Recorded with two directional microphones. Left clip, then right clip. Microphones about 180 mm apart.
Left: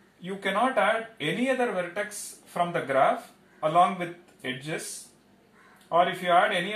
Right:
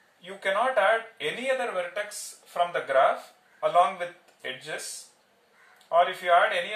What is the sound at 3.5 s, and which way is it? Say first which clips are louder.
Speech: right 1 dB; 20° right (ahead or behind).